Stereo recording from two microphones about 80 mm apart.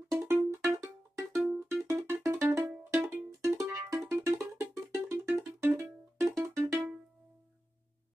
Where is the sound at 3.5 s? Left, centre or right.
Right.